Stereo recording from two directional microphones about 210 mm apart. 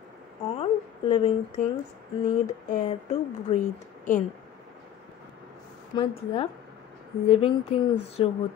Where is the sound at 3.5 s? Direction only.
30° left (ahead or behind).